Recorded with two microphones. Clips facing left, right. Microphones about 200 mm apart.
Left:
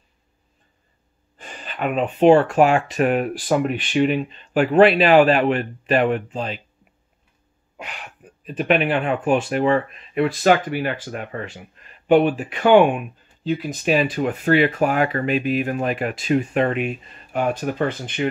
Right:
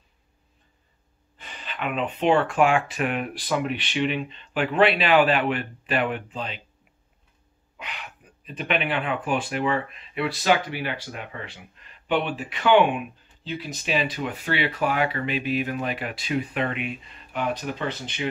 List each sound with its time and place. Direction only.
1.4 s speech: 45° left (ahead or behind)
7.7 s speech: 45° left (ahead or behind)